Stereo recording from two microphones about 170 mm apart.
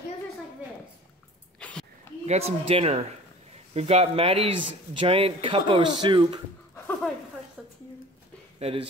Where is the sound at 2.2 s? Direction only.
40° right (ahead or behind).